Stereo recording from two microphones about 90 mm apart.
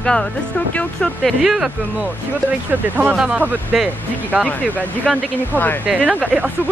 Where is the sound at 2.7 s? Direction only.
20° right (ahead or behind).